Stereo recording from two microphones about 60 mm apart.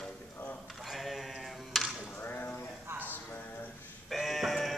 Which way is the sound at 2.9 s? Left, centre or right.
Right.